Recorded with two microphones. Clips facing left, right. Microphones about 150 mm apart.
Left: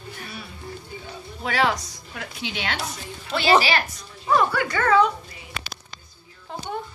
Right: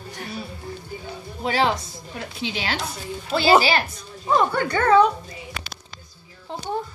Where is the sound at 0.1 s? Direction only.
40° right (ahead or behind).